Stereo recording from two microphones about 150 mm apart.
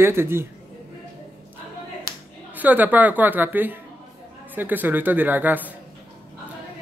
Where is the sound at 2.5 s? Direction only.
10° right (ahead or behind).